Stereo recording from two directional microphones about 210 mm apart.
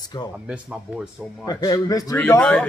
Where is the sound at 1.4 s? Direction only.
15° left (ahead or behind).